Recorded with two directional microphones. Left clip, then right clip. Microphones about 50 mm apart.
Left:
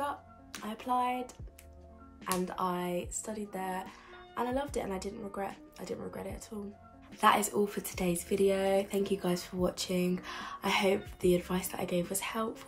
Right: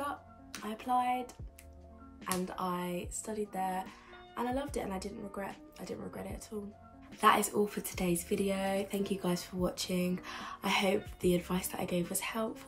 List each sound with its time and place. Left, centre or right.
0.7 s speech: left